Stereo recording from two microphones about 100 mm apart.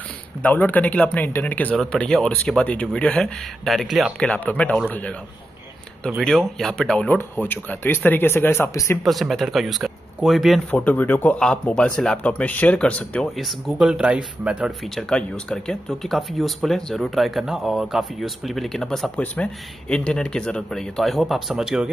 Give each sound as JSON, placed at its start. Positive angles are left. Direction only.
{"t": 0.4, "sound": "speech", "side_deg": 15}
{"t": 3.6, "sound": "speech", "side_deg": 0}
{"t": 4.2, "sound": "speech", "side_deg": 15}
{"t": 6.0, "sound": "speech", "side_deg": 5}
{"t": 9.0, "sound": "speech", "side_deg": 0}
{"t": 10.7, "sound": "speech", "side_deg": 15}
{"t": 13.4, "sound": "speech", "side_deg": 0}
{"t": 15.0, "sound": "speech", "side_deg": 10}